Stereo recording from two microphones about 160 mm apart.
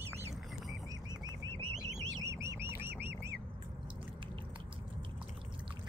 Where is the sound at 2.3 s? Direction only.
15° right (ahead or behind).